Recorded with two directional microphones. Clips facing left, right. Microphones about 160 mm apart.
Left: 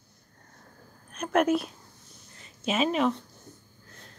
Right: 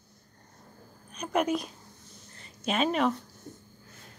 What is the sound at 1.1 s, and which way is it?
A woman's voice, centre (ahead or behind).